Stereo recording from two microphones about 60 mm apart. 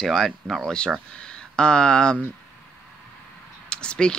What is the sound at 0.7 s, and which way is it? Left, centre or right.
Speech, centre.